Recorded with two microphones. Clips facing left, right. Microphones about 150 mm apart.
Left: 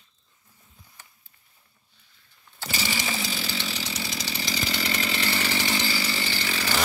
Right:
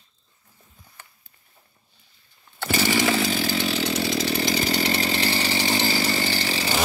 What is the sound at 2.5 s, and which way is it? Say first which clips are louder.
Chainsaw: right 9 dB; 60° right (ahead or behind).